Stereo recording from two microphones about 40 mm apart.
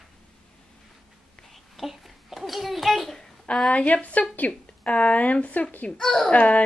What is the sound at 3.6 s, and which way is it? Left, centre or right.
Speech, left.